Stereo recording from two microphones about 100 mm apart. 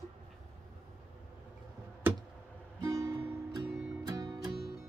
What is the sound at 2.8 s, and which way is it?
Music, 35° right (ahead or behind).